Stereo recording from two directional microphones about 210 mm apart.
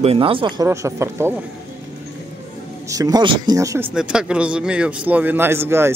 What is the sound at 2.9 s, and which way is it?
A man's voice, 20° right (ahead or behind).